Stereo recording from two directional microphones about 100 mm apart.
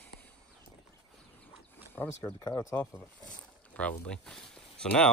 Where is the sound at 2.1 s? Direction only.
30° left (ahead or behind).